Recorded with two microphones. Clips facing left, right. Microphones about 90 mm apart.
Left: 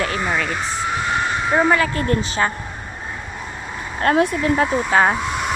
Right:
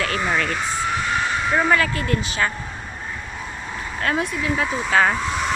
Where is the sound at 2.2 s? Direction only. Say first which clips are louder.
Left 3 dB; 30° left (ahead or behind).